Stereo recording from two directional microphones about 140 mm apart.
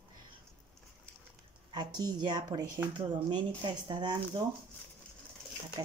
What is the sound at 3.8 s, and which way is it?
Speech, 30° right (ahead or behind).